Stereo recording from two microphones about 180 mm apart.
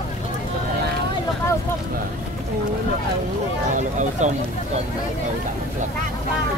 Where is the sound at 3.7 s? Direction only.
45° right (ahead or behind).